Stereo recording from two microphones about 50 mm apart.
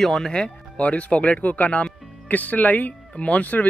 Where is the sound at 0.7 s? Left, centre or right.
Left.